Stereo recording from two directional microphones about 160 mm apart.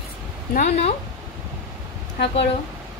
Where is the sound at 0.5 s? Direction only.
45° left (ahead or behind).